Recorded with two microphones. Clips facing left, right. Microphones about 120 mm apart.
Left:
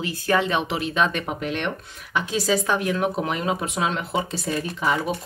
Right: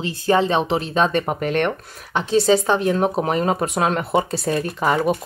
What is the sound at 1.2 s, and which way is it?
Speech, 50° right (ahead or behind).